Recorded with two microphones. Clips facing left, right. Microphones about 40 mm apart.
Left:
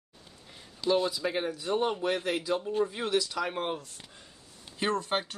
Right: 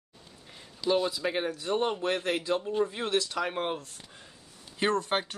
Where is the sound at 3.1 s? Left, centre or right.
Right.